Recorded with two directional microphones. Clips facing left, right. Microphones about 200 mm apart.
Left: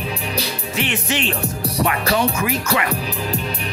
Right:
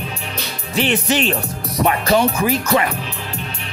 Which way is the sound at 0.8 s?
35° right (ahead or behind).